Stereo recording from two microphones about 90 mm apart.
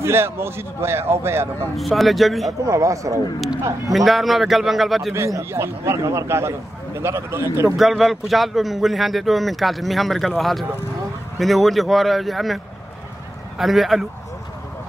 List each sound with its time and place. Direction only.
0.0 s a man's voice: 30° right (ahead or behind)
1.8 s speech: centre (ahead or behind)
2.6 s speech: 40° right (ahead or behind)
3.9 s speech: centre (ahead or behind)
5.1 s a man's voice: 30° right (ahead or behind)
7.7 s speech: centre (ahead or behind)
13.6 s speech: centre (ahead or behind)